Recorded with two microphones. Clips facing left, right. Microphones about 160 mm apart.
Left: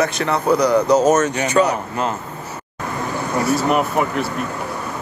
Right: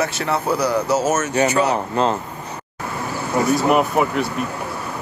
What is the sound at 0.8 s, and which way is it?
Speech, 15° left (ahead or behind).